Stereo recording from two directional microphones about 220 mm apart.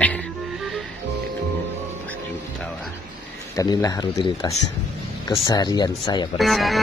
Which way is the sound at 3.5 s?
15° left (ahead or behind).